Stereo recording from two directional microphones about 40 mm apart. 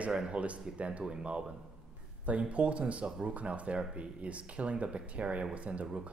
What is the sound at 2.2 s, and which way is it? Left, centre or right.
Speech, right.